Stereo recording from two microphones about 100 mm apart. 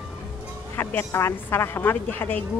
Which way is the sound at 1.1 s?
25° left (ahead or behind).